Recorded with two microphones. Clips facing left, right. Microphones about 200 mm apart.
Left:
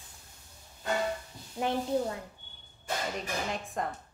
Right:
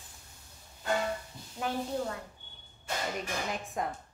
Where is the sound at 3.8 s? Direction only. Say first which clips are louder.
Even; 5° right (ahead or behind).